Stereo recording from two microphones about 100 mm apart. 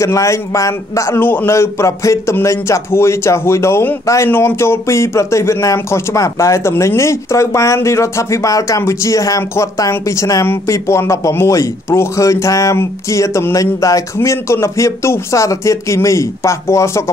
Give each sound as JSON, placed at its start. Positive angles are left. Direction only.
{"t": 0.0, "sound": "speech", "side_deg": 30}